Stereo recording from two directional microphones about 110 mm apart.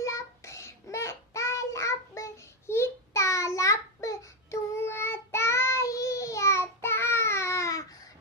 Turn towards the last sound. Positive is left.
turn(degrees=30)  # may be behind; listen again after turning